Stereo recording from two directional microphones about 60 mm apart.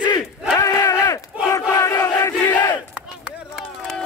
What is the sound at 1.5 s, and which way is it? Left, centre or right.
Battle cry, left.